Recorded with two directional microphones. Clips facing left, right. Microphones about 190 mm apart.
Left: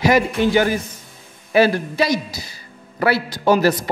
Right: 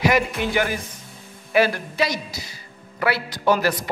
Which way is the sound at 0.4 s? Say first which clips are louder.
Left 6 dB; 35° left (ahead or behind).